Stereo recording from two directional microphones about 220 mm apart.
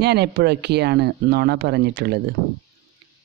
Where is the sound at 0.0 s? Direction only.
50° right (ahead or behind).